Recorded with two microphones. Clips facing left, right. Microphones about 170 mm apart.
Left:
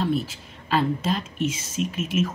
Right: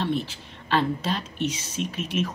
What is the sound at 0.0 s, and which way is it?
A woman's voice, 40° left (ahead or behind).